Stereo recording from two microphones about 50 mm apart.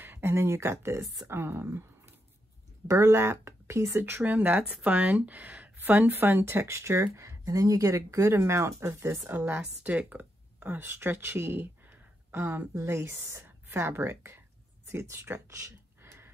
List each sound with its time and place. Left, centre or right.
0.0 s a sound: right
0.3 s speech: right
4.2 s speech: right
8.4 s speech: right
9.5 s speech: right
12.7 s a woman's voice: right